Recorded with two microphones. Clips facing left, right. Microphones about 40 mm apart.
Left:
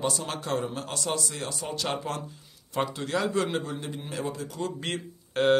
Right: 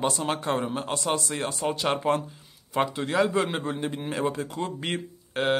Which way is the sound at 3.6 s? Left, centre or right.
Right.